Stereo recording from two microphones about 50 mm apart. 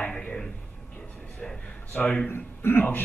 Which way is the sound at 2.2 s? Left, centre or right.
Left.